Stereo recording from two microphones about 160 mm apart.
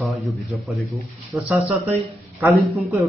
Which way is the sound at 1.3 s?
15° right (ahead or behind).